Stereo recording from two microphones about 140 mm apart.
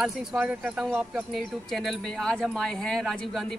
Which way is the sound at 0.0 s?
5° right (ahead or behind).